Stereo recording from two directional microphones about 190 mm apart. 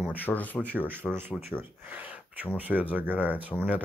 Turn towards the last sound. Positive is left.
turn(degrees=-10)  # may be behind; listen again after turning